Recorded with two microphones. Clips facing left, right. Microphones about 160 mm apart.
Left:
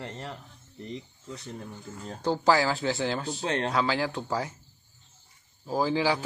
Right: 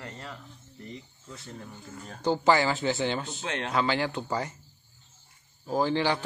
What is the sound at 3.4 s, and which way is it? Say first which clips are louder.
Speech: left 8 dB; 35° left (ahead or behind).